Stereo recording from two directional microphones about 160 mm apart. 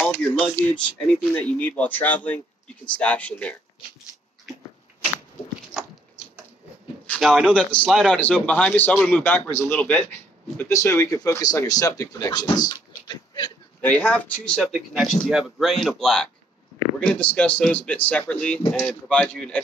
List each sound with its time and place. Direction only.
0.0 s speech: 10° left (ahead or behind)
5.8 s dog: 5° right (ahead or behind)
7.2 s speech: centre (ahead or behind); by 13.5 s 25° left (ahead or behind)
13.7 s speech: 10° left (ahead or behind)